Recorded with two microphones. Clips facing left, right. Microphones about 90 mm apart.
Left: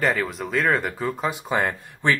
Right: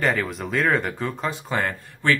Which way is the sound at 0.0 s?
Centre (ahead or behind).